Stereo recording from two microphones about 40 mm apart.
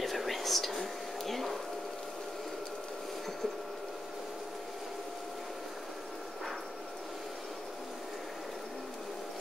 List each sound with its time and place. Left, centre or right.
0.0 s whispering: centre